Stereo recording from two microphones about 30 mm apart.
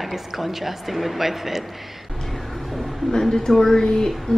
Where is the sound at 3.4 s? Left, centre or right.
Centre.